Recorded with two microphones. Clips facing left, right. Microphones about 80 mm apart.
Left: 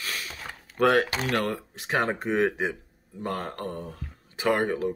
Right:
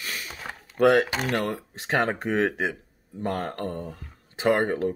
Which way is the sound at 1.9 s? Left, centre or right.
Right.